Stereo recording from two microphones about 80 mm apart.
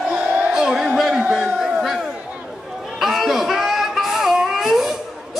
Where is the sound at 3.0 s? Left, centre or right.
Centre.